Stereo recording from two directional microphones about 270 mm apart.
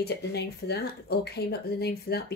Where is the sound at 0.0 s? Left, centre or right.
Left.